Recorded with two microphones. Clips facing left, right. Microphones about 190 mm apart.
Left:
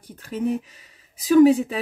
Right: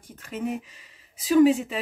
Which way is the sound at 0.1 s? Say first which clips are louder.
Left 4 dB; 35° left (ahead or behind).